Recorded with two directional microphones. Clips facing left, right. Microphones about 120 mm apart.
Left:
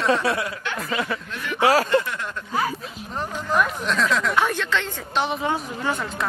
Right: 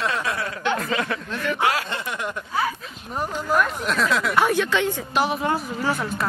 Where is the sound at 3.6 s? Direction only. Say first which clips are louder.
Left 2 dB; 5° right (ahead or behind).